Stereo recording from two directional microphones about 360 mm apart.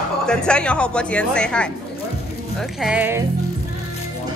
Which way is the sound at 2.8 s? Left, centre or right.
Centre.